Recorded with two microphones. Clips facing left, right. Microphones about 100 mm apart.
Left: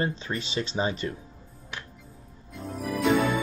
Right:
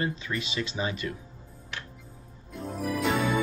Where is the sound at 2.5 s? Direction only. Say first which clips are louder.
Right 1 dB; centre (ahead or behind).